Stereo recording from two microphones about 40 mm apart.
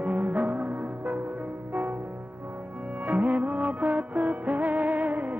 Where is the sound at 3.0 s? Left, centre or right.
Right.